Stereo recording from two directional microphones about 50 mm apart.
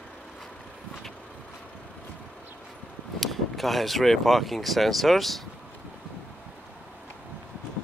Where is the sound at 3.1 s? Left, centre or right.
Centre.